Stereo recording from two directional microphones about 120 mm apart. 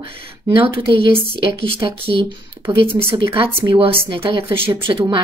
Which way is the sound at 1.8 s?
30° right (ahead or behind).